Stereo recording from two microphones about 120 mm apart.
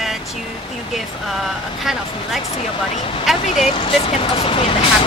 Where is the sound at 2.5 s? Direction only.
60° left (ahead or behind).